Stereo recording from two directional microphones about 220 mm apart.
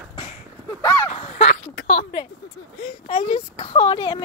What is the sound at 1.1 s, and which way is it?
Speech, 35° left (ahead or behind).